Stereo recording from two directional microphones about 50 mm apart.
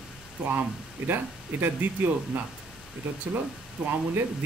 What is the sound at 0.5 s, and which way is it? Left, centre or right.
Speech, right.